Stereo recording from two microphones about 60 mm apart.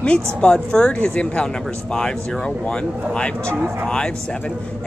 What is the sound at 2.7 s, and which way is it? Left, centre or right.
Speech, centre.